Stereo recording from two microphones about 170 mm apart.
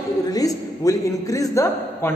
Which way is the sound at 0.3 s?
20° left (ahead or behind).